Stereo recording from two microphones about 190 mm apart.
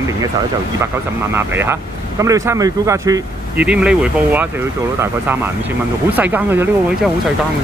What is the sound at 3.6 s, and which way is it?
Speech, 5° right (ahead or behind).